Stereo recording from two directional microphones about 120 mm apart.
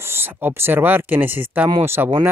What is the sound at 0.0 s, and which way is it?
Speech, 20° right (ahead or behind).